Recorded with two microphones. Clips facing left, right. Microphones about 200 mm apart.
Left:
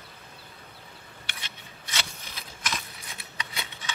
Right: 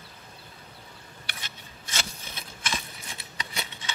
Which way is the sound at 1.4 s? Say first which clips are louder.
Even; 45° right (ahead or behind).